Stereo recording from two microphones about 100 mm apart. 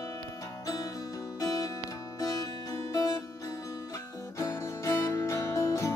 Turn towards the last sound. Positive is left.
turn(degrees=30)  # may be behind; listen again after turning